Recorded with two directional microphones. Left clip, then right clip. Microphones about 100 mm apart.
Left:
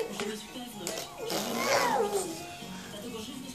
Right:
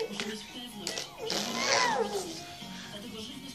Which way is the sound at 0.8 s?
15° left (ahead or behind).